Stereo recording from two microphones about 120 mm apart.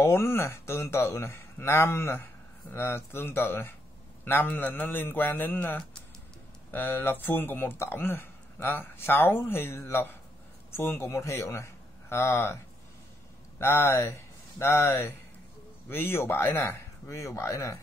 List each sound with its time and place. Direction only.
0.0 s a man's voice: 20° left (ahead or behind)
13.6 s speech: 20° left (ahead or behind)